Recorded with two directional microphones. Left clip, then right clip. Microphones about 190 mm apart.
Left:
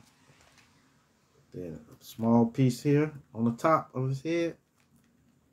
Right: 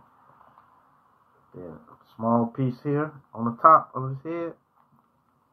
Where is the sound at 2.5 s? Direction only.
30° left (ahead or behind).